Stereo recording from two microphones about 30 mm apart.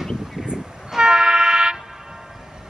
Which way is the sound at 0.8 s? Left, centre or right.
Right.